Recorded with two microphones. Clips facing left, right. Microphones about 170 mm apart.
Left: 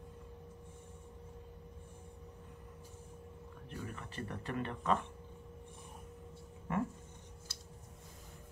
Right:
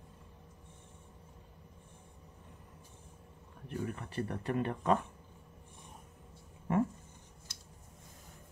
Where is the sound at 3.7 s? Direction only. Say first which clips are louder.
Right 7 dB; 45° right (ahead or behind).